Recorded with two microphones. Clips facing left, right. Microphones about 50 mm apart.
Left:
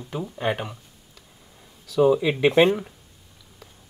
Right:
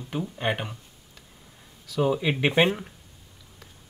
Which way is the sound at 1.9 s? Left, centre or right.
Centre.